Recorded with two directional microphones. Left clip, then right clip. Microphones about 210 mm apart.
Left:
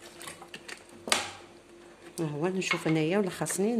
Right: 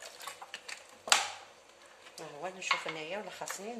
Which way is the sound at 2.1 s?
50° left (ahead or behind).